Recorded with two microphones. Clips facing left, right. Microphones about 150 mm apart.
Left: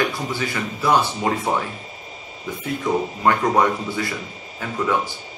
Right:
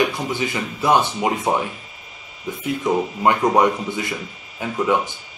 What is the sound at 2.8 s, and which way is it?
Speech, 20° right (ahead or behind).